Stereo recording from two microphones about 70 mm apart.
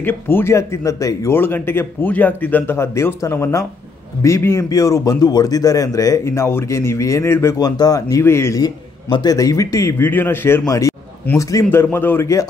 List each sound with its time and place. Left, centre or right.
0.0 s speech: left
1.3 s a man's voice: left
4.6 s speech: left
6.2 s a man's voice: left
7.5 s speech: left
8.2 s a man's voice: left
9.2 s speech: left
9.9 s a man's voice: left
10.7 s a man's voice: left
11.7 s a man's voice: left